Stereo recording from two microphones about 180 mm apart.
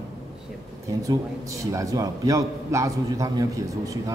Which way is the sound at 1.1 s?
20° right (ahead or behind).